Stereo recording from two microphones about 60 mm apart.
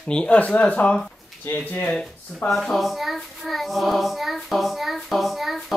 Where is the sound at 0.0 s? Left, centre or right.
Centre.